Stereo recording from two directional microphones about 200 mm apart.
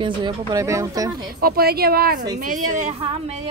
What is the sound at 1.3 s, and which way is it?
A woman's voice, 50° right (ahead or behind).